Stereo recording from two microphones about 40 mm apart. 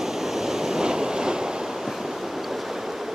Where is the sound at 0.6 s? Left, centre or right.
Centre.